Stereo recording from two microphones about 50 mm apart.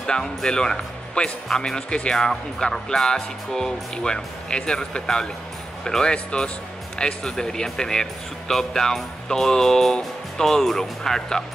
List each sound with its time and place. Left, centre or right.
0.0 s speech: centre